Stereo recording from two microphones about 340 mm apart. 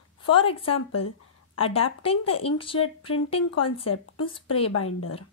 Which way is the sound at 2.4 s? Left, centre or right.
Centre.